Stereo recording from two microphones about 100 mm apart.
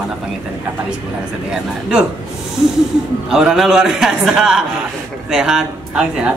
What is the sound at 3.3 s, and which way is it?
A man's voice, 5° right (ahead or behind).